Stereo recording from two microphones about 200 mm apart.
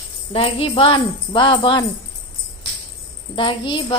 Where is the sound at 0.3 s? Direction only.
30° left (ahead or behind).